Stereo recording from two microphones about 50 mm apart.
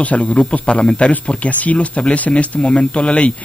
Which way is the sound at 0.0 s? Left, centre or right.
Left.